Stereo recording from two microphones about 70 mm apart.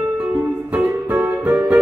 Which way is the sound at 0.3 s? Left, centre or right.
Right.